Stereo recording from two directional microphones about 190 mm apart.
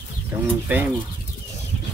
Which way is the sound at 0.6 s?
10° right (ahead or behind).